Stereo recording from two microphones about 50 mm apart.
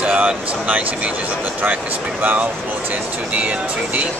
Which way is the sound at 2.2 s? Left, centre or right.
Right.